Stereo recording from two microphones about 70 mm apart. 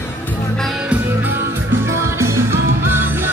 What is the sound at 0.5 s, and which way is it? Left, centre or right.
Music, centre.